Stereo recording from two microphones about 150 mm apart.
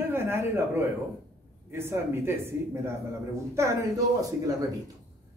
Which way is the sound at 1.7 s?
15° right (ahead or behind).